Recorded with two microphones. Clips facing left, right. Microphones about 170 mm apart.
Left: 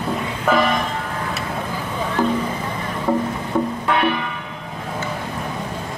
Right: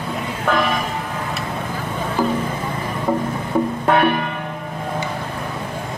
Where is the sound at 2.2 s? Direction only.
5° right (ahead or behind).